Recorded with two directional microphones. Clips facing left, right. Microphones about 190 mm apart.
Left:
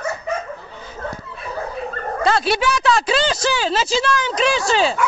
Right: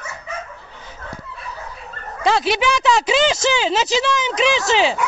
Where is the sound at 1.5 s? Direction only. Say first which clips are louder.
Left 9 dB; 50° left (ahead or behind).